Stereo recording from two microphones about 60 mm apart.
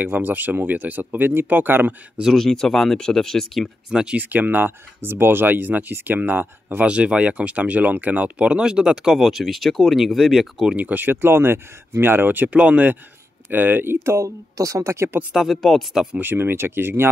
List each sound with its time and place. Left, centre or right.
0.0 s speech: right
2.3 s speech: centre
3.9 s speech: centre
4.2 s speech: right
6.9 s speech: centre
10.8 s speech: right
15.5 s speech: centre
16.2 s speech: right